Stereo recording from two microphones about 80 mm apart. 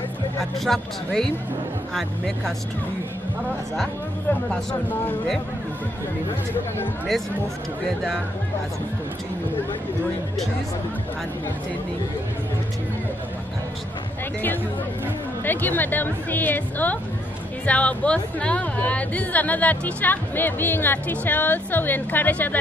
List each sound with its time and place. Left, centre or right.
0.4 s speech: centre
4.5 s speech: left
15.4 s speech: left